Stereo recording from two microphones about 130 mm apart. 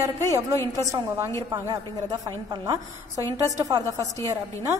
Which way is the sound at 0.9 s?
25° right (ahead or behind).